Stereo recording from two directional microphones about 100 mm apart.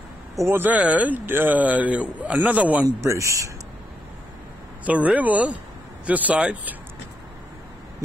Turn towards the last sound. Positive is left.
turn(degrees=-15)  # may be behind; listen again after turning